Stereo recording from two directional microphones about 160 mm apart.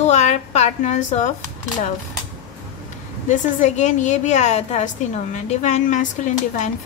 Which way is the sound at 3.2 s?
50° left (ahead or behind).